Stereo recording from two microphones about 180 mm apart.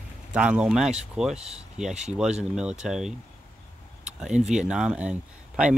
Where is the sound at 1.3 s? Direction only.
35° right (ahead or behind).